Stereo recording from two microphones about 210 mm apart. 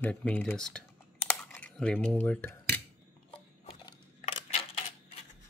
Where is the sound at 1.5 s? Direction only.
5° left (ahead or behind).